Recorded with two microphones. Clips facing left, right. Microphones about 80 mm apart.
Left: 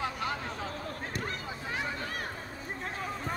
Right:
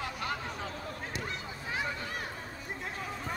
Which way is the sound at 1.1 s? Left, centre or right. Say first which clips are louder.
Left 2 dB; left.